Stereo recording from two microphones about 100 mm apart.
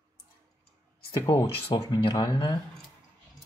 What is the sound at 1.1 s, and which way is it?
Speech, 40° left (ahead or behind).